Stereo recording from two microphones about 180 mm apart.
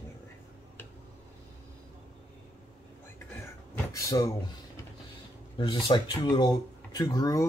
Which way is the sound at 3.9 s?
15° left (ahead or behind).